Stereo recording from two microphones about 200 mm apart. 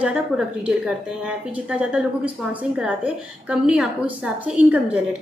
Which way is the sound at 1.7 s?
5° right (ahead or behind).